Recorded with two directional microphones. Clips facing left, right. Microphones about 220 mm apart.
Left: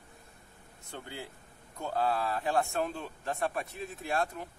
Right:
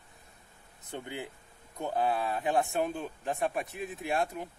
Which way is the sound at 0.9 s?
20° right (ahead or behind).